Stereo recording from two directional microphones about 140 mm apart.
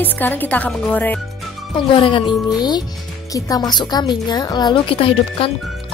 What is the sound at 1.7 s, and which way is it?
A woman's voice, 35° left (ahead or behind).